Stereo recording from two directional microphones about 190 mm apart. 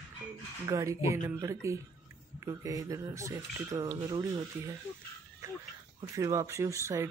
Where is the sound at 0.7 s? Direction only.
15° right (ahead or behind).